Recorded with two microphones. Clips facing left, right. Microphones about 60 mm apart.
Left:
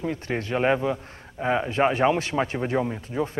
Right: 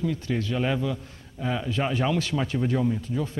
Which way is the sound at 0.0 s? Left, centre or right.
Left.